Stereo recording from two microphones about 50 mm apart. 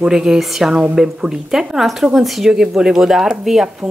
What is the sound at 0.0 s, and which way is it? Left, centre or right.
Speech, centre.